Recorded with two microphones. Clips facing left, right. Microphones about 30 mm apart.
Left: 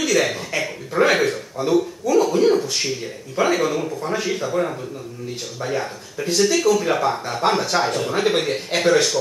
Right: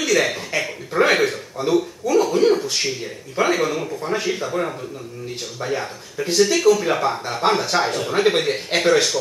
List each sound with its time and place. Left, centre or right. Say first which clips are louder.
0.0 s speech: even; centre